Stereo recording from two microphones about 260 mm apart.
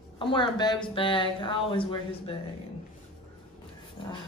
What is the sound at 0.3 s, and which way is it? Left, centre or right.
Speech, centre.